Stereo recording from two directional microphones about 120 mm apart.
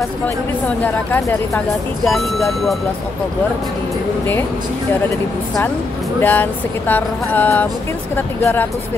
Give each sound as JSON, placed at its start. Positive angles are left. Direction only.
{"t": 2.1, "sound": "speech", "side_deg": 0}
{"t": 6.2, "sound": "music", "side_deg": 15}
{"t": 8.4, "sound": "speech", "side_deg": 20}